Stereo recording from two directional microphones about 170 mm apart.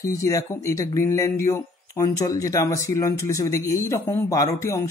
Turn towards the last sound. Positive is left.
turn(degrees=20)  # may be behind; listen again after turning